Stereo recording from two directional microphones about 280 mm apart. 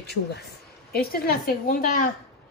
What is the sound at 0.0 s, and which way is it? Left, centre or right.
Speech, left.